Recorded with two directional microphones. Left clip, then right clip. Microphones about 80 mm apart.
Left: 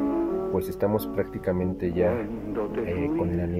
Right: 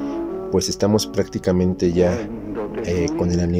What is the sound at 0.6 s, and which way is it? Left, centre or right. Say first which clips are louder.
Speech: right 10 dB; right.